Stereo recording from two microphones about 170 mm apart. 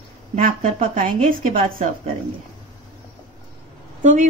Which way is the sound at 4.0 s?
45° right (ahead or behind).